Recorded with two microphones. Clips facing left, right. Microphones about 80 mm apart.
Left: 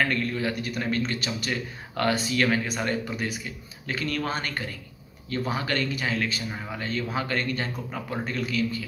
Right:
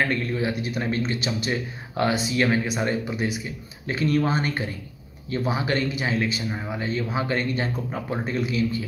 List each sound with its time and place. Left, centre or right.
0.1 s speech: right